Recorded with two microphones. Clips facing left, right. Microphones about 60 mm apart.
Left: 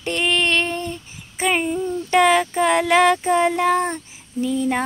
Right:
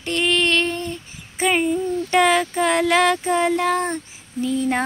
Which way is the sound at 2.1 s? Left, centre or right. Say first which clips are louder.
Left 2 dB; centre.